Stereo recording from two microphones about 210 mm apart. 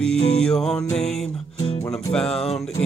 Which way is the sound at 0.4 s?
5° left (ahead or behind).